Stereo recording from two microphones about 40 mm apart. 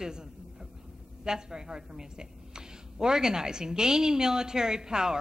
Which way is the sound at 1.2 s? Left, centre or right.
Centre.